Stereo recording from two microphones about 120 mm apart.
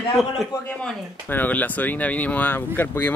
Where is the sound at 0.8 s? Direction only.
15° left (ahead or behind).